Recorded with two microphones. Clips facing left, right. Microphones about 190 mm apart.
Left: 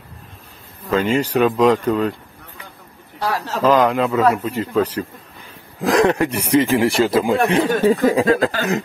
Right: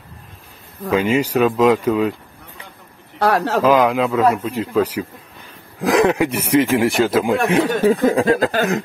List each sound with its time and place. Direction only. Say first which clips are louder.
0.8 s speech: right 1 dB; 10° right (ahead or behind)
3.2 s speech: right 6 dB; 60° right (ahead or behind)
3.6 s speech: left 2 dB; 5° right (ahead or behind)